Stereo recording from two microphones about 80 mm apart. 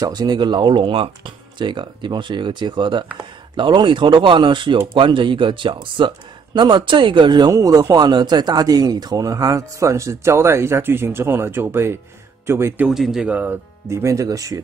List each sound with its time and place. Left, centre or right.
0.0 s speech: right
7.4 s speech: right
7.9 s speech: right
12.8 s speech: centre
13.3 s speech: right
13.8 s speech: right